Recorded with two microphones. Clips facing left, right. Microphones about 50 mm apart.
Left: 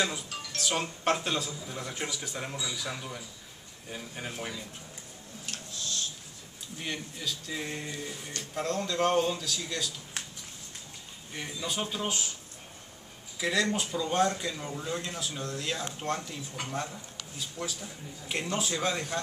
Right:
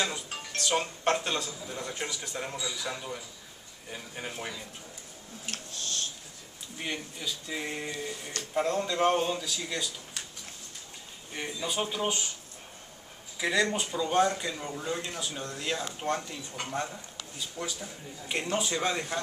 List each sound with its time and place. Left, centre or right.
0.6 s speech: centre
5.5 s a sound: right
6.8 s speech: centre
11.3 s speech: centre
13.4 s speech: centre